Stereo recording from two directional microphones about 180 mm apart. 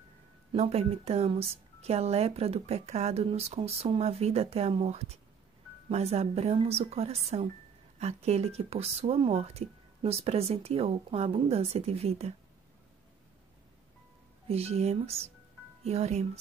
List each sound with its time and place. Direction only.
0.5 s a woman's voice: 35° right (ahead or behind)
14.5 s a woman's voice: 35° right (ahead or behind)